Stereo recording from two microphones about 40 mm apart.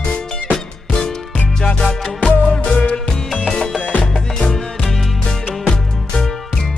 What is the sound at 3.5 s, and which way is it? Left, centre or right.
Music, centre.